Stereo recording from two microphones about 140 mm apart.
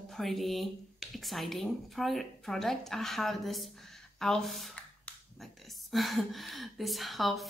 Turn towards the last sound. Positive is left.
turn(degrees=0)  # may be behind; listen again after turning